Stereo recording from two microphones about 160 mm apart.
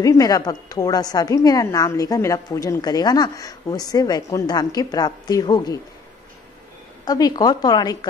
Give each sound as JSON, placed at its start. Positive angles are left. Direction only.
{"t": 0.0, "sound": "a woman's voice", "side_deg": 25}
{"t": 7.1, "sound": "a woman's voice", "side_deg": 25}